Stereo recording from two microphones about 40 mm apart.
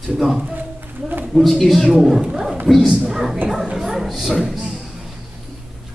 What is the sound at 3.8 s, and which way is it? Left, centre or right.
Bow-wow, centre.